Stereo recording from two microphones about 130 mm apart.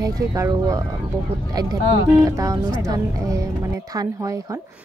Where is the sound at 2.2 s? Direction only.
25° right (ahead or behind).